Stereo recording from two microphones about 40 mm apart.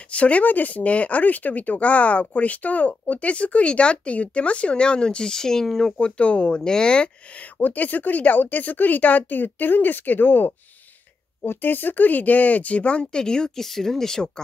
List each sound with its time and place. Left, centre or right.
0.1 s speech: left; by 5.9 s centre
5.9 s speech: left
7.5 s speech: left
13.2 s speech: centre